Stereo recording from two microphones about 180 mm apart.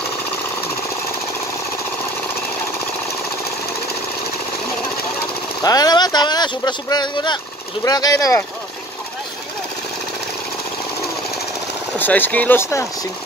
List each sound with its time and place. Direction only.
5.6 s speech: 20° left (ahead or behind)
12.0 s speech: 10° left (ahead or behind)